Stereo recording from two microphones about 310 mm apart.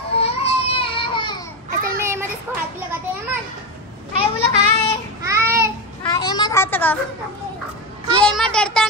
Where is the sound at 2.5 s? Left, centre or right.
Centre.